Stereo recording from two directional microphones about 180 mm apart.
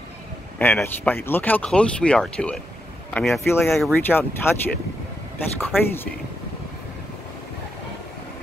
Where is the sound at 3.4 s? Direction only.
10° left (ahead or behind).